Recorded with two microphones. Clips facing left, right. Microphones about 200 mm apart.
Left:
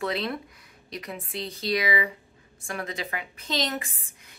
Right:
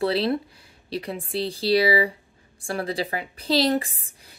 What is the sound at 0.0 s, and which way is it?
A woman's voice, 30° right (ahead or behind).